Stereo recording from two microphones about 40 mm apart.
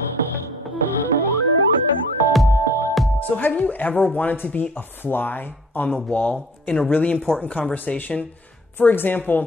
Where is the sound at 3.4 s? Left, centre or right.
Left.